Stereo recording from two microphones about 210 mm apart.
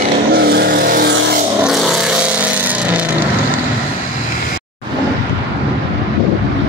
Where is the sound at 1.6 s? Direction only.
Centre (ahead or behind).